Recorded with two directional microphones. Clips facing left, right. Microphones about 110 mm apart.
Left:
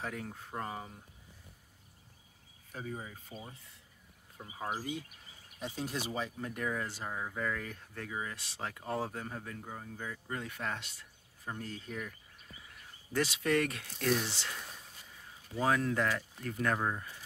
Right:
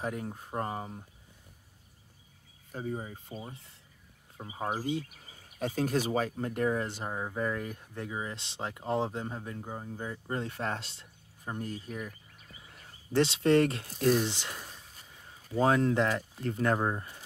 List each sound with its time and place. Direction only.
0.0 s speech: 20° right (ahead or behind)
0.6 s speech: 35° right (ahead or behind)
2.7 s speech: 35° right (ahead or behind)
4.4 s speech: 25° right (ahead or behind)
5.6 s speech: 50° right (ahead or behind)
6.4 s speech: 35° right (ahead or behind)
6.9 s speech: 25° right (ahead or behind)
12.6 s speech: 30° right (ahead or behind)
14.2 s speech: 20° right (ahead or behind)
15.5 s speech: 25° right (ahead or behind)